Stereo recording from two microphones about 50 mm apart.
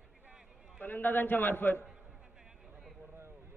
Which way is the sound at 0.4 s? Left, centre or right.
Centre.